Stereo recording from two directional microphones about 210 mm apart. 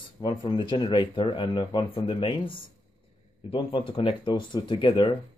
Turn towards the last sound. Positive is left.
turn(degrees=25)  # may be behind; listen again after turning